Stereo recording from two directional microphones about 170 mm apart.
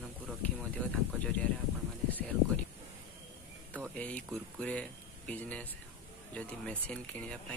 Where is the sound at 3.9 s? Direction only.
10° left (ahead or behind).